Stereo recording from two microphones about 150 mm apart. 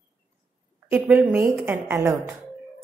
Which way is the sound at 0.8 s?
15° right (ahead or behind).